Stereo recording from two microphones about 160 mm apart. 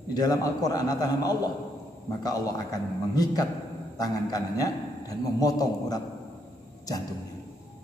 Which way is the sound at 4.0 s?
25° left (ahead or behind).